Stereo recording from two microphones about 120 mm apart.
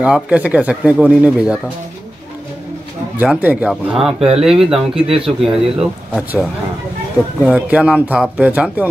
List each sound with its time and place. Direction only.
0.0 s speech: 10° right (ahead or behind)
3.2 s speech: 15° right (ahead or behind)
4.2 s speech: 55° right (ahead or behind)
4.5 s speech: 5° right (ahead or behind)
7.4 s speech: 10° right (ahead or behind)